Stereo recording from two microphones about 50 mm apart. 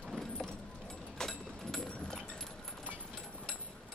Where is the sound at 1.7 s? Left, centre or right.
Centre.